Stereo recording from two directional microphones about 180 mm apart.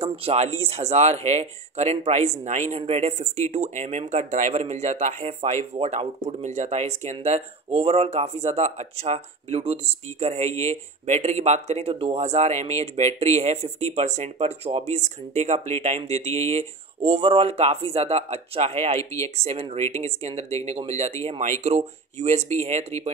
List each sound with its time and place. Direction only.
0.0 s speech: 35° right (ahead or behind)
18.9 s speech: 15° left (ahead or behind)
19.3 s speech: 35° right (ahead or behind)